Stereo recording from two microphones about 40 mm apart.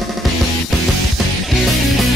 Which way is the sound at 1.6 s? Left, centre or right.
Centre.